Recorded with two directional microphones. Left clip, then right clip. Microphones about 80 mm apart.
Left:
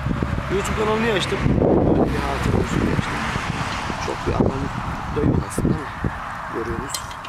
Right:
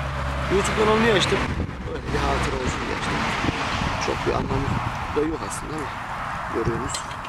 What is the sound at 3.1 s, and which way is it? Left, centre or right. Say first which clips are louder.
Dog: right 1 dB; left.